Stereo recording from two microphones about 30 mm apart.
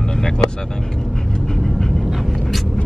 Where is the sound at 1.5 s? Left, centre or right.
Centre.